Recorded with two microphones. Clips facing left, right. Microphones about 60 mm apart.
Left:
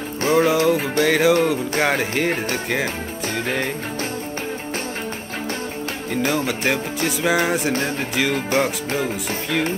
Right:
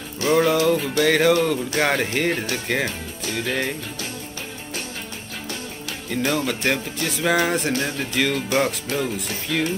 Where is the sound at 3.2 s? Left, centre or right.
Left.